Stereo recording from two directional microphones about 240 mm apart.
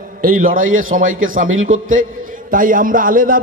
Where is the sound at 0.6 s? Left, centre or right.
Right.